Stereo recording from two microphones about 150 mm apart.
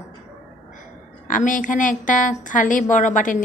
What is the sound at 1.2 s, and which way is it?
A woman's voice, 60° left (ahead or behind).